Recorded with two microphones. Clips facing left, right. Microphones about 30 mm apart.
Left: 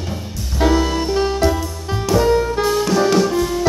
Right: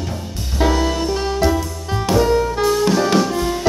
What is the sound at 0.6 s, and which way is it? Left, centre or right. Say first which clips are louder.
Music: left 1 dB; centre.